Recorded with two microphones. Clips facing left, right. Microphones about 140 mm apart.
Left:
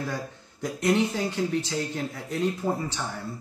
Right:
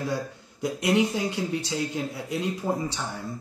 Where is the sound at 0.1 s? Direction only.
15° right (ahead or behind).